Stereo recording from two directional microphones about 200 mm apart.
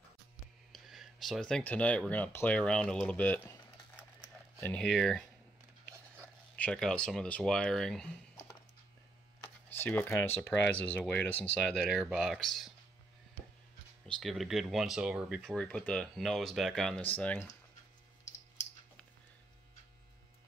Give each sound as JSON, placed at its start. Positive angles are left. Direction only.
{"t": 0.7, "sound": "speech", "side_deg": 0}
{"t": 4.6, "sound": "speech", "side_deg": 5}
{"t": 6.5, "sound": "speech", "side_deg": 5}
{"t": 9.7, "sound": "speech", "side_deg": 10}
{"t": 14.0, "sound": "speech", "side_deg": 0}
{"t": 15.5, "sound": "speech", "side_deg": 5}